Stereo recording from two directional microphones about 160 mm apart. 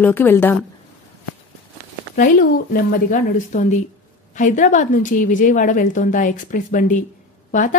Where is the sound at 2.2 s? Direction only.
65° left (ahead or behind).